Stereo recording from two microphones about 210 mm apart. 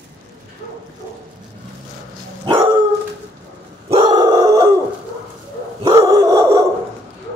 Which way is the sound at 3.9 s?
20° right (ahead or behind).